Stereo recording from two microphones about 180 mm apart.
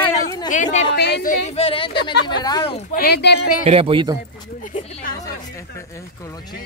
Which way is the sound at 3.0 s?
65° left (ahead or behind).